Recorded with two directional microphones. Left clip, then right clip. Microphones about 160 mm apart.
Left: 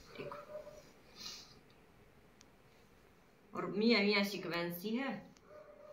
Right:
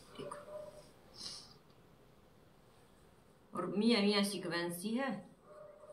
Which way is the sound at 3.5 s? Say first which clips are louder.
Left 1 dB; 15° right (ahead or behind).